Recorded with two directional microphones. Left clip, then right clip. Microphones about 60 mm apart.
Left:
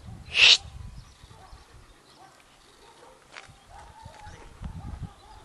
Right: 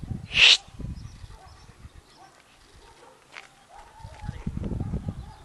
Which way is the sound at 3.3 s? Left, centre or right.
Right.